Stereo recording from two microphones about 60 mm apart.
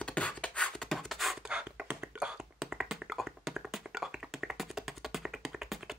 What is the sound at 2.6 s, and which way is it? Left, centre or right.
Tap, centre.